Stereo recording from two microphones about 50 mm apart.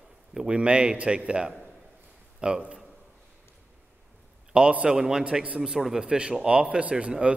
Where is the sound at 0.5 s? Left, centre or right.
Right.